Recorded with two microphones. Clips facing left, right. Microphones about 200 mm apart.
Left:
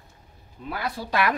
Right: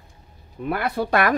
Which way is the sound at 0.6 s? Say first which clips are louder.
Right 7 dB; 60° right (ahead or behind).